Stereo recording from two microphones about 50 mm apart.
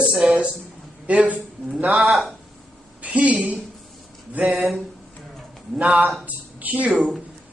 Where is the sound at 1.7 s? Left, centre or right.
Centre.